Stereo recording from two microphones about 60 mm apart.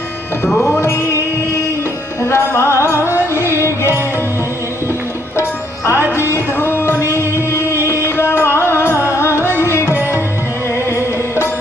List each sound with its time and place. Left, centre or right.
0.5 s music: centre
2.2 s music: left
6.1 s music: left